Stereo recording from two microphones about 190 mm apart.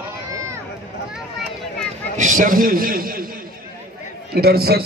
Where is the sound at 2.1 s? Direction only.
40° right (ahead or behind).